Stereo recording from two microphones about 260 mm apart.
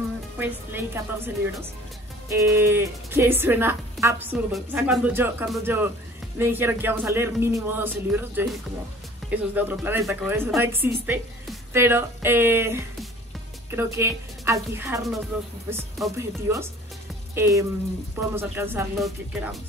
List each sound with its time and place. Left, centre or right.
0.4 s speech: centre